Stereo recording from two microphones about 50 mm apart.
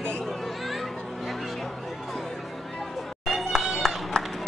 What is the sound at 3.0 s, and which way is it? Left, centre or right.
Run, centre.